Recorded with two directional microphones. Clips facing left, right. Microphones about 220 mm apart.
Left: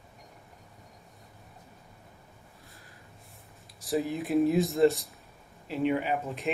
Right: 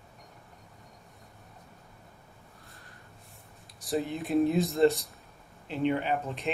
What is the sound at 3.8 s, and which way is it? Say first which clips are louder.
Speech: left 1 dB; centre (ahead or behind).